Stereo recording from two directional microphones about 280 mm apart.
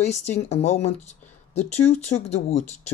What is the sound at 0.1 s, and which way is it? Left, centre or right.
Speech, left.